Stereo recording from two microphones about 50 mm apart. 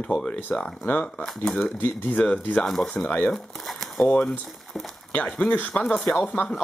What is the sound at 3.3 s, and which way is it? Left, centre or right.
Speech, centre.